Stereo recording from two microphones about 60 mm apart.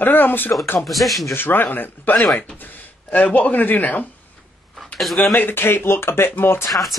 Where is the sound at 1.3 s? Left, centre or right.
Left.